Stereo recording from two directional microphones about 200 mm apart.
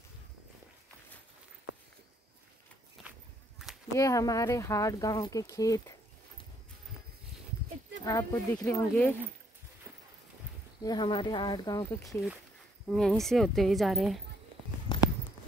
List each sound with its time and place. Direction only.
3.9 s speech: 15° left (ahead or behind)
8.0 s speech: 15° left (ahead or behind)
8.5 s a woman's voice: 5° left (ahead or behind)
10.8 s speech: 20° left (ahead or behind)
12.0 s a woman's voice: centre (ahead or behind)
14.9 s walk: 20° left (ahead or behind)